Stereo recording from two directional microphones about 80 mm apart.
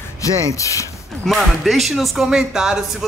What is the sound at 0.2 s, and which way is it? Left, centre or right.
Speech, left.